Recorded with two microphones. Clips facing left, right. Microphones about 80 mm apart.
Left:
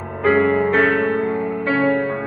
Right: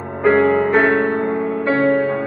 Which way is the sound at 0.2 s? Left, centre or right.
Centre.